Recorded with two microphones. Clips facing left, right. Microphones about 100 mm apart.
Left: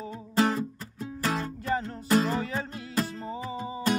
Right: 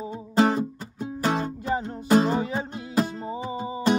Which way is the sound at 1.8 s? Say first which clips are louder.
Right 6 dB; 25° right (ahead or behind).